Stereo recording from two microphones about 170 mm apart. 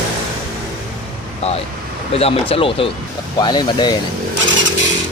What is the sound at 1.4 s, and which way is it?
Speech, 40° left (ahead or behind).